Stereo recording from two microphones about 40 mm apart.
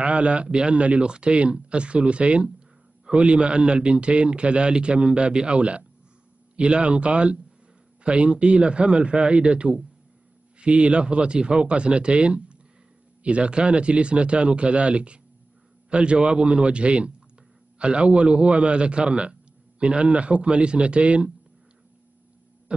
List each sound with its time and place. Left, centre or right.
0.0 s a man's voice: right
22.7 s music: right